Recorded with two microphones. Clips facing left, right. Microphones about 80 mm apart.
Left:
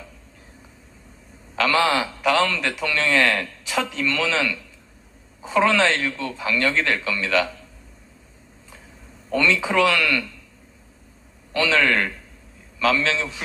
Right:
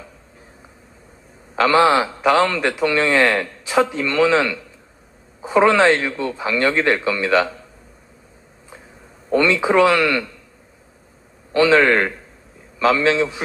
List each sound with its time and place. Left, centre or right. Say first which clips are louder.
1.5 s a man's voice: right 6 dB; right
9.3 s a man's voice: right 5 dB; right
11.5 s a man's voice: right 6 dB; right